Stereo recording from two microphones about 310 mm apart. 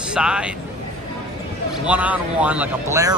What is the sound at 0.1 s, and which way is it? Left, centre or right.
Speech, centre.